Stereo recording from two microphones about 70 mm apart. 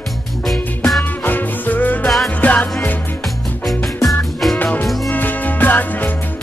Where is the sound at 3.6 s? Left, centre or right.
Centre.